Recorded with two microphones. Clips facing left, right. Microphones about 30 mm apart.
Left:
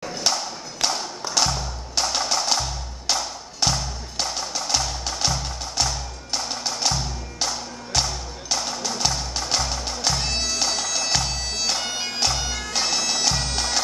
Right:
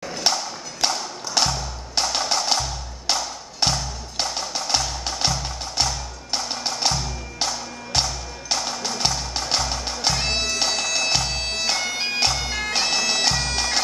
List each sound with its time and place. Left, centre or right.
0.3 s a sound: centre
0.8 s clip-clop: centre
1.4 s music: right
2.0 s music: centre
2.3 s percussion: centre
3.1 s music: centre
10.1 s bagpipes: right
10.5 s bagpipes: right
12.4 s bagpipes: right
12.7 s bagpipes: right